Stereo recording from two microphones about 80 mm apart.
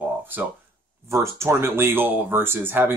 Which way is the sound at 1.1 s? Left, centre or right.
Right.